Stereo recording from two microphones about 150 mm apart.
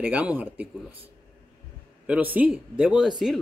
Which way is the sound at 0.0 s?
10° right (ahead or behind).